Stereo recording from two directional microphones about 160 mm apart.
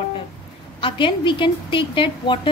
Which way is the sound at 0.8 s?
30° left (ahead or behind).